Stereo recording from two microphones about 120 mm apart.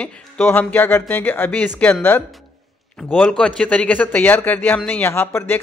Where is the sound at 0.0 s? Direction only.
15° left (ahead or behind).